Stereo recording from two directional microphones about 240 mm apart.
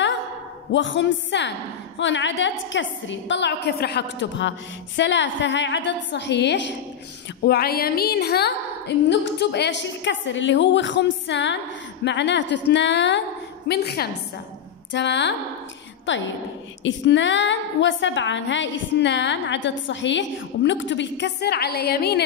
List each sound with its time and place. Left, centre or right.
0.7 s a woman's voice: left